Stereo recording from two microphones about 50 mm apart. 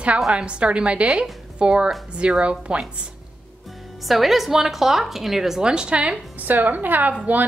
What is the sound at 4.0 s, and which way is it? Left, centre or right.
A woman's voice, centre.